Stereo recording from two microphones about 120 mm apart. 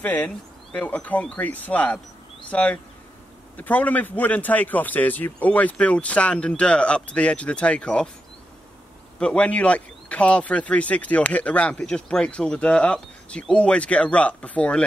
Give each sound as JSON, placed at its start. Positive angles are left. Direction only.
{"t": 0.0, "sound": "speech", "side_deg": 15}
{"t": 9.2, "sound": "speech", "side_deg": 10}